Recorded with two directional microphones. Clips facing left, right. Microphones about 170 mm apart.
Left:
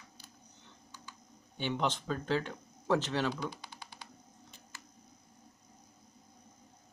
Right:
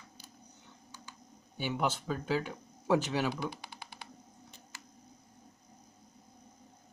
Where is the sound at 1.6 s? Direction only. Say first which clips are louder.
Even; 10° right (ahead or behind).